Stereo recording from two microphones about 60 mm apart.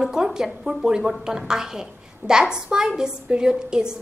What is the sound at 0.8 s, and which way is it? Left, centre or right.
A woman's voice, centre.